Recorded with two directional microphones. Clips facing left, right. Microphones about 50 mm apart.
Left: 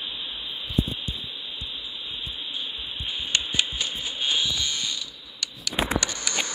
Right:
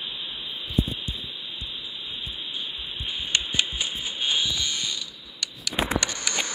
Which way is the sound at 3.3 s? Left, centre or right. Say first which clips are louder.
Even; centre.